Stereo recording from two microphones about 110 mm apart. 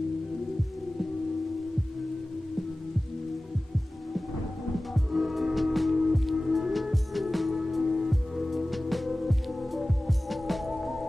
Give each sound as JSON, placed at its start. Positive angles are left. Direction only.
{"t": 4.9, "sound": "music", "side_deg": 0}